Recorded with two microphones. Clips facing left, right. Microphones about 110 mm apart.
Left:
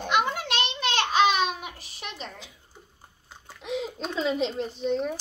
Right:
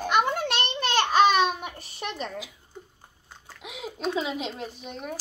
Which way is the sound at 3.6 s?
5° right (ahead or behind).